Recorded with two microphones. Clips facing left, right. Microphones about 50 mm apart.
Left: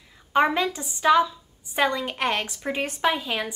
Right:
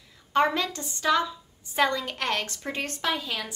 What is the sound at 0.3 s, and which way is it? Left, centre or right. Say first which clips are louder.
A woman's voice: left 3 dB; centre.